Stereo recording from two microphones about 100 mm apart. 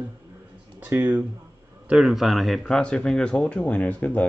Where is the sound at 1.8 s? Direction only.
5° right (ahead or behind); by 4.3 s 15° left (ahead or behind).